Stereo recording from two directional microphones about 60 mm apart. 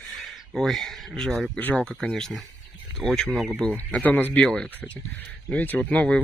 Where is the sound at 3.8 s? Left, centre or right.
Left.